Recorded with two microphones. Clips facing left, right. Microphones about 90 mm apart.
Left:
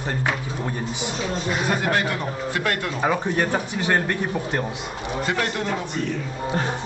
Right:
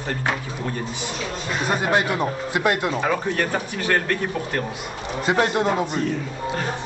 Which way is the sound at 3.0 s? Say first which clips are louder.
Even; 15° left (ahead or behind).